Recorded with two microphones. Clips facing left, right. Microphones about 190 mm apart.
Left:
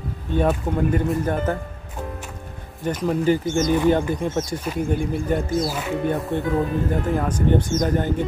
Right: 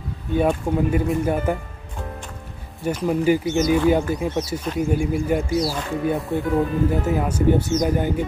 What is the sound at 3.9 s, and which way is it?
Speech, 5° right (ahead or behind).